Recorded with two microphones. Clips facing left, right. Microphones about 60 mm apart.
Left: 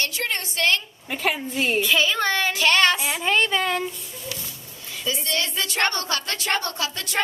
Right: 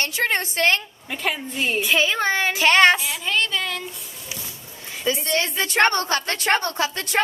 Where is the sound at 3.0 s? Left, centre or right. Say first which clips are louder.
Left 2 dB; left.